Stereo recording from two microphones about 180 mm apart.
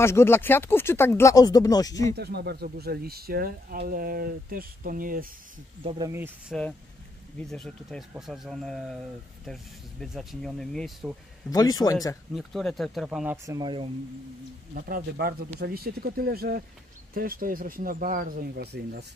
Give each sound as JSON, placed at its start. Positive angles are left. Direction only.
{"t": 0.0, "sound": "speech", "side_deg": 15}
{"t": 2.1, "sound": "speech", "side_deg": -65}
{"t": 5.9, "sound": "speech", "side_deg": -25}
{"t": 6.5, "sound": "speech", "side_deg": 0}
{"t": 11.5, "sound": "speech", "side_deg": 20}
{"t": 12.4, "sound": "speech", "side_deg": 0}
{"t": 13.5, "sound": "speech", "side_deg": -25}
{"t": 14.7, "sound": "speech", "side_deg": -55}